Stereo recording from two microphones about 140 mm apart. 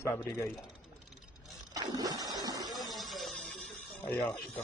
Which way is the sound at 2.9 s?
Centre (ahead or behind).